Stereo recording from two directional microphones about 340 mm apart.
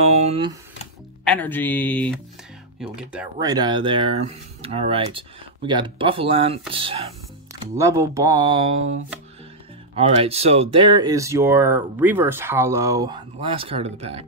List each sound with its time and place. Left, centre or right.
0.0 s speech: centre
1.2 s speech: centre
9.9 s speech: centre